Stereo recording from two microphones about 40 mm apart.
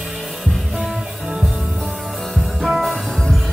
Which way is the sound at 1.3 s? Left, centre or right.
Right.